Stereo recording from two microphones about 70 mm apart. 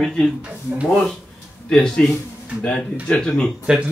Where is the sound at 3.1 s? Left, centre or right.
Centre.